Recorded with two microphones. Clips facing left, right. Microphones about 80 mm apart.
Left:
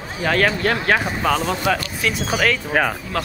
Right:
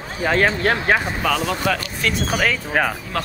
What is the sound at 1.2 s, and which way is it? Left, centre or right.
Speech, left.